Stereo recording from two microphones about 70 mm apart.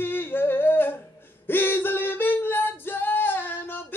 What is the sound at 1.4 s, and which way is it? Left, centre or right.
Singing, left.